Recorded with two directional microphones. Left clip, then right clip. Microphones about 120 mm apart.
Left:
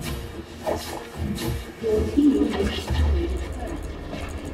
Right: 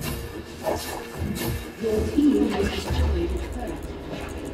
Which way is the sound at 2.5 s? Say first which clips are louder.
Even; 30° left (ahead or behind).